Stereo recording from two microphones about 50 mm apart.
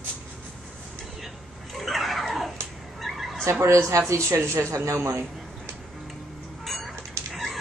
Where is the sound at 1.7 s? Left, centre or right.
Centre.